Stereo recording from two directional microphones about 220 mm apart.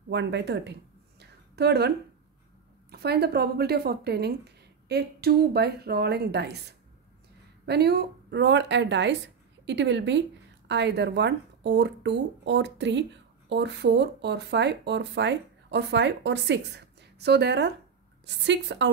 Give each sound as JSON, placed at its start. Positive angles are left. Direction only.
{"t": 0.1, "sound": "speech", "side_deg": -55}
{"t": 1.2, "sound": "a sound", "side_deg": -50}
{"t": 2.9, "sound": "speech", "side_deg": -45}
{"t": 7.6, "sound": "speech", "side_deg": -50}